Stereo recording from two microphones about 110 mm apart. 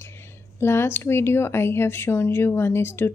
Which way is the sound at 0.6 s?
20° left (ahead or behind).